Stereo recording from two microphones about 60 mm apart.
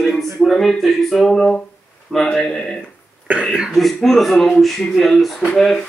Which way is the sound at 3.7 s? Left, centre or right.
Centre.